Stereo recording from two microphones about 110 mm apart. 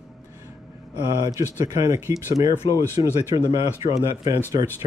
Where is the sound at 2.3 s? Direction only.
80° left.